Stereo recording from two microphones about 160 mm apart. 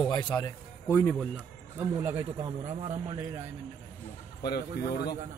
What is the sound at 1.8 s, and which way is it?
Speech, 15° right (ahead or behind).